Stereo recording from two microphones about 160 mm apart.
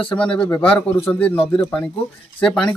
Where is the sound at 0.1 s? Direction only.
5° left (ahead or behind).